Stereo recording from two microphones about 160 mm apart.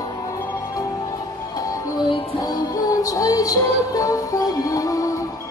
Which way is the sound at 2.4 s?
25° left (ahead or behind).